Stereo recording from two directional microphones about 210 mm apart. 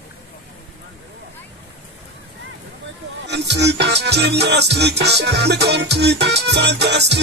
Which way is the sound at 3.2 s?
55° right (ahead or behind).